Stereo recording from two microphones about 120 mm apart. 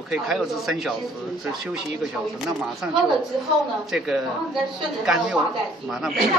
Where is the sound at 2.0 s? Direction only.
5° right (ahead or behind).